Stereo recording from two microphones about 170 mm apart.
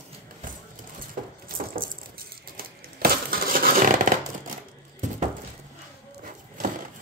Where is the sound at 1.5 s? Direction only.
60° right (ahead or behind).